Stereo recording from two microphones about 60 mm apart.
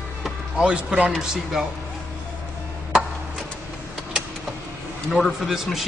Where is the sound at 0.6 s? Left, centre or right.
Centre.